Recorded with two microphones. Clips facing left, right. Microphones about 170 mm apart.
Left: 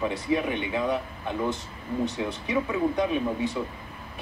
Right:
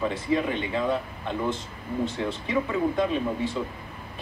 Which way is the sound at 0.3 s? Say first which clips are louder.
Right 1 dB; 10° left (ahead or behind).